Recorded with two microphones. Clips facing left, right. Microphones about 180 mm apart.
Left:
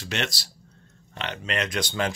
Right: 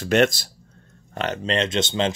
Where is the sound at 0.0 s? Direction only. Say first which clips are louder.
Right 12 dB; 50° right (ahead or behind).